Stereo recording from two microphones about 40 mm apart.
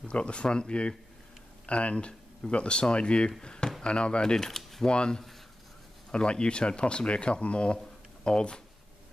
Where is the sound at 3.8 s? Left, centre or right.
Left.